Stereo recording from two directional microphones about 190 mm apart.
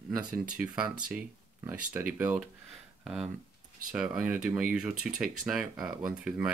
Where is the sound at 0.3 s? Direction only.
5° right (ahead or behind).